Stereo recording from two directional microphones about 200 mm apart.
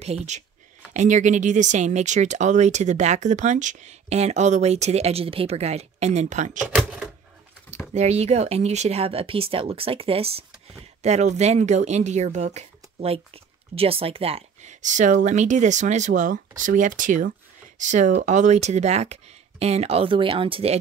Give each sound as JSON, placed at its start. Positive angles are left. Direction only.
{"t": 0.0, "sound": "speech", "side_deg": -30}
{"t": 6.7, "sound": "speech", "side_deg": 0}
{"t": 7.9, "sound": "speech", "side_deg": -35}